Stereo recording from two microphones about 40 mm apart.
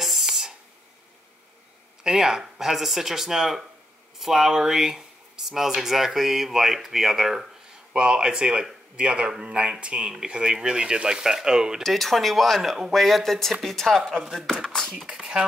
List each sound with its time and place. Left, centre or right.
0.0 s a sound: centre
2.0 s speech: centre
7.9 s speech: right
11.8 s speech: centre
14.2 s speech: centre
15.0 s speech: centre